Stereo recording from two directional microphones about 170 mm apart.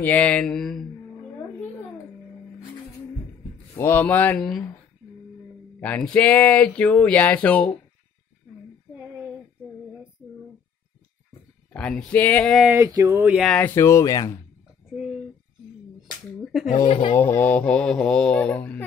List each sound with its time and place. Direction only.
0.0 s mantra: 10° left (ahead or behind)
3.7 s speech: 15° left (ahead or behind)
5.8 s speech: 10° left (ahead or behind)
11.7 s speech: 5° left (ahead or behind)
12.6 s a sound: 15° right (ahead or behind); by 13.7 s centre (ahead or behind)
13.7 s speech: 15° left (ahead or behind)
16.6 s speech: 40° left (ahead or behind)
17.2 s speech: 10° left (ahead or behind)